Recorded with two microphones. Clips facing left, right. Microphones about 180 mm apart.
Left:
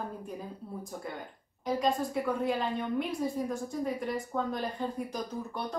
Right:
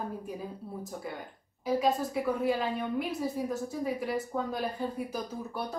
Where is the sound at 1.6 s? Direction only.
5° right (ahead or behind).